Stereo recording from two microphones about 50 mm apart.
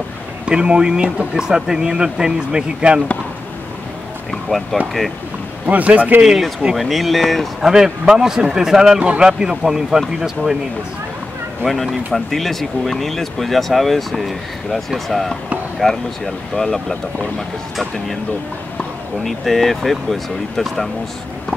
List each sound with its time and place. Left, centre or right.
0.5 s speech: centre
4.3 s speech: centre
5.7 s speech: right
6.2 s speech: centre
8.1 s speech: centre
9.0 s a man's voice: right
9.3 s speech: centre
11.6 s speech: centre
19.2 s speech: centre